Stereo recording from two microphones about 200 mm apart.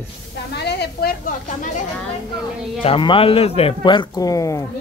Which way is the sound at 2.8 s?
25° left (ahead or behind).